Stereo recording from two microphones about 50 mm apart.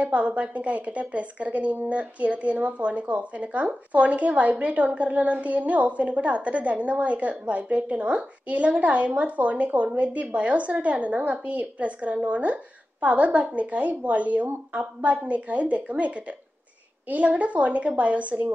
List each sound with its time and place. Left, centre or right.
0.0 s a woman's voice: right